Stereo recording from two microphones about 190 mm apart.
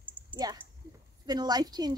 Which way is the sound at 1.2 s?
20° right (ahead or behind).